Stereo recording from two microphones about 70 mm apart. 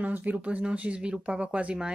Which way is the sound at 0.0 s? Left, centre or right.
Right.